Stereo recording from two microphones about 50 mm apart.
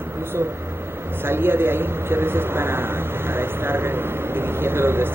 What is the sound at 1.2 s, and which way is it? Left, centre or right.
A man's voice, right.